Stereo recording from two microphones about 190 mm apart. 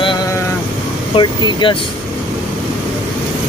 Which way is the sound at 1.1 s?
25° left (ahead or behind).